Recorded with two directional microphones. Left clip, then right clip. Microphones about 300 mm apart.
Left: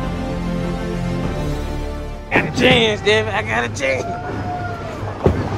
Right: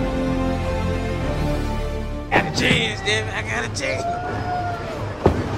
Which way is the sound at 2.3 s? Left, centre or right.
Centre.